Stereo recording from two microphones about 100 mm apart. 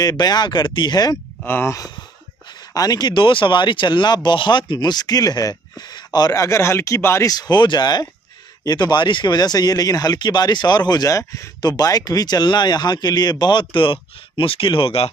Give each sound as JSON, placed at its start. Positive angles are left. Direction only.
{"t": 0.0, "sound": "speech", "side_deg": 40}
{"t": 1.4, "sound": "speech", "side_deg": 20}
{"t": 2.7, "sound": "speech", "side_deg": 40}
{"t": 7.2, "sound": "speech", "side_deg": 45}